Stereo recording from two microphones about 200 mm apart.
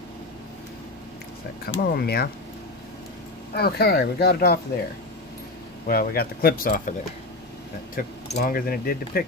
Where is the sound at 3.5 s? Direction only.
50° left (ahead or behind).